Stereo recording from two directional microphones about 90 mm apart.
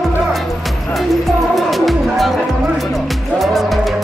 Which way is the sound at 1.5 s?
Centre (ahead or behind).